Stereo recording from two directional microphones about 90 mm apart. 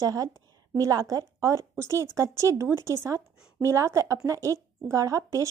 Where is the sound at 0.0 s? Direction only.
40° right (ahead or behind).